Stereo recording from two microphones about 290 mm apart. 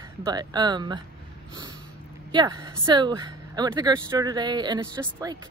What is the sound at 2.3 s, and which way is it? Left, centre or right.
Speech, centre.